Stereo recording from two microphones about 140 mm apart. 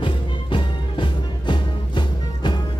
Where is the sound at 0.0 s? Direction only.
35° left (ahead or behind).